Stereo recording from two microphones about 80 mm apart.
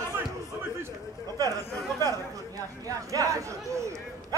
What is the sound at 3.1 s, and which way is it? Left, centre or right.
Speech, right.